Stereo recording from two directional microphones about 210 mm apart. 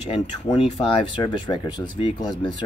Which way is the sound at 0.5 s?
25° left (ahead or behind).